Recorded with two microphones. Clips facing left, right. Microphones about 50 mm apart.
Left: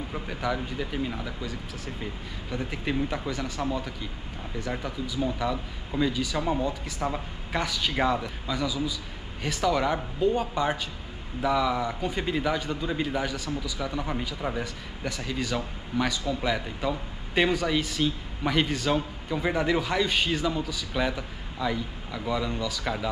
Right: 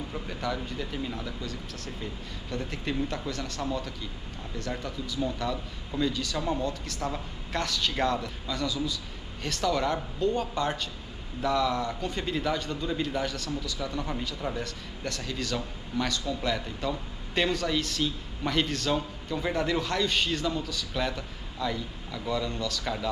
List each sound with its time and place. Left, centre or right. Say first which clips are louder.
0.1 s a man's voice: left 4 dB; centre